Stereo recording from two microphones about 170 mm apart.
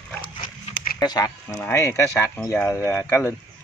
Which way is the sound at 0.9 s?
20° left (ahead or behind).